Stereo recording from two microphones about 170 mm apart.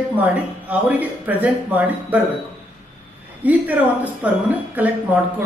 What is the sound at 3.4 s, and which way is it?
Speech, 10° right (ahead or behind).